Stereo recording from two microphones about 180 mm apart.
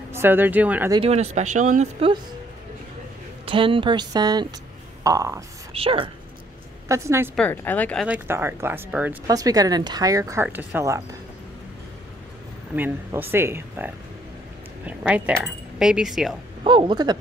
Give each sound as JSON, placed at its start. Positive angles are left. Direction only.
{"t": 0.1, "sound": "speech", "side_deg": -10}
{"t": 0.9, "sound": "speech", "side_deg": -35}
{"t": 3.4, "sound": "speech", "side_deg": -30}
{"t": 5.7, "sound": "speech", "side_deg": -30}
{"t": 6.9, "sound": "speech", "side_deg": -15}
{"t": 7.3, "sound": "a woman's voice", "side_deg": 10}
{"t": 8.1, "sound": "speech", "side_deg": -10}
{"t": 9.3, "sound": "speech", "side_deg": -20}
{"t": 12.7, "sound": "speech", "side_deg": -10}
{"t": 16.6, "sound": "speech", "side_deg": -25}